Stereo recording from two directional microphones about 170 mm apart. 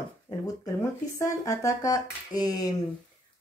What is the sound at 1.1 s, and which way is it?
A woman's voice, 20° left (ahead or behind).